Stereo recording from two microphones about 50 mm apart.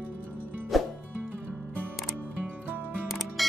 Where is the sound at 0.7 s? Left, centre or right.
Centre.